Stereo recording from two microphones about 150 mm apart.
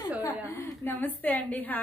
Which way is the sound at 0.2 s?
20° left (ahead or behind).